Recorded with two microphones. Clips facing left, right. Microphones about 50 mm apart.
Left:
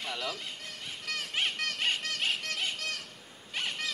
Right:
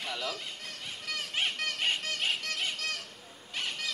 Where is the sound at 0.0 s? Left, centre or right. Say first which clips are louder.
Even; centre.